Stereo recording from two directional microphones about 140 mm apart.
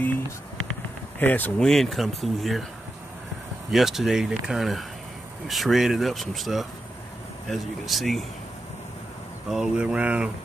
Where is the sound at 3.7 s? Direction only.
Centre (ahead or behind).